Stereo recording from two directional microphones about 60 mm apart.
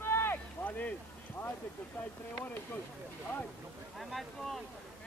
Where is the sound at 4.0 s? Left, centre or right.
Centre.